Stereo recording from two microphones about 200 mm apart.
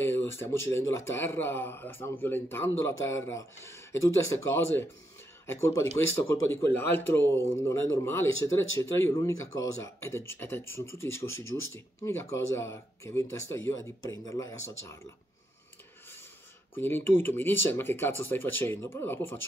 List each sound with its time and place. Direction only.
0.0 s a man's voice: 10° left (ahead or behind)
16.7 s a man's voice: 10° left (ahead or behind)